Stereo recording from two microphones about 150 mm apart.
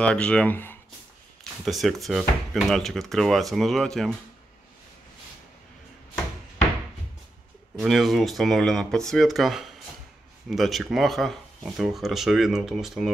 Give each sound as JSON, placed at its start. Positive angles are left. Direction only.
{"t": 0.0, "sound": "speech", "side_deg": 5}
{"t": 1.6, "sound": "speech", "side_deg": 0}
{"t": 7.8, "sound": "speech", "side_deg": 0}